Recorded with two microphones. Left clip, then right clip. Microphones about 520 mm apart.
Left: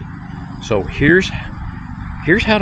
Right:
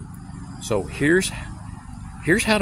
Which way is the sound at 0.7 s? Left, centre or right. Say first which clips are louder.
Left 7 dB; right.